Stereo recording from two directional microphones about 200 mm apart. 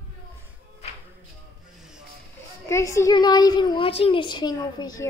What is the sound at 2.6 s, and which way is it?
A woman's voice, 15° left (ahead or behind).